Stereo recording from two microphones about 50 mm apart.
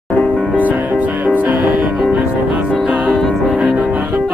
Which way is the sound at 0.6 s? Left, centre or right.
Right.